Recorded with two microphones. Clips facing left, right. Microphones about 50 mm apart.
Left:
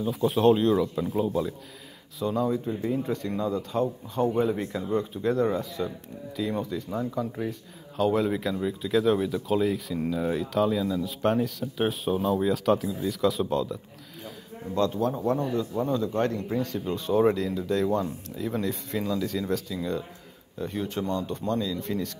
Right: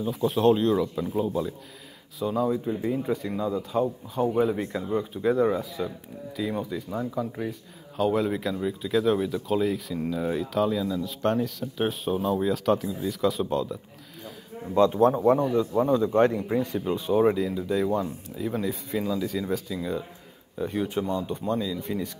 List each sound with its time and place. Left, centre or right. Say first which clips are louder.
0.0 s speech: even; centre
14.7 s a man's voice: right 6 dB; centre